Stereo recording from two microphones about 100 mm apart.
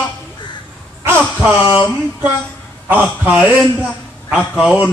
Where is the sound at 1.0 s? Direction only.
25° right (ahead or behind).